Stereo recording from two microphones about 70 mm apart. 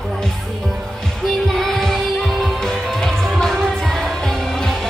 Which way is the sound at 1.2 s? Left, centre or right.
Centre.